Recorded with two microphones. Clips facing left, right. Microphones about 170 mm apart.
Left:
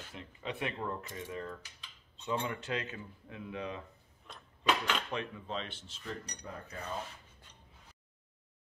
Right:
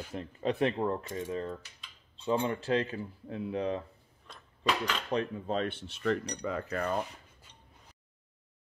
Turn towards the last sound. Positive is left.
turn(degrees=-70)  # may be behind; listen again after turning